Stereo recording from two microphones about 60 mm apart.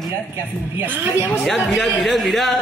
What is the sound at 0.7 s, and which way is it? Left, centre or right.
Speech, right.